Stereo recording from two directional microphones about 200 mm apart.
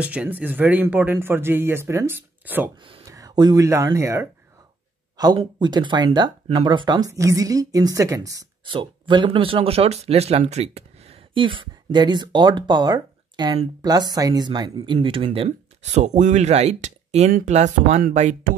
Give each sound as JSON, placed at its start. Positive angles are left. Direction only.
{"t": 0.0, "sound": "speech", "side_deg": -5}
{"t": 2.8, "sound": "speech", "side_deg": -20}